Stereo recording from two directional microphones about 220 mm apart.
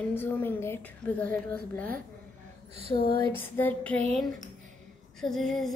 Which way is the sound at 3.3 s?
10° left (ahead or behind).